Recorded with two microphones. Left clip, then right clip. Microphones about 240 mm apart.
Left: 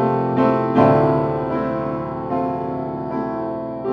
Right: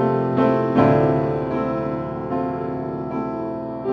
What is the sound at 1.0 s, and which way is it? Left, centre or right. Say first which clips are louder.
Music: left 2 dB; left.